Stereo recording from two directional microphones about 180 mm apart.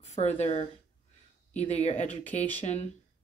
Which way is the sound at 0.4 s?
35° left (ahead or behind).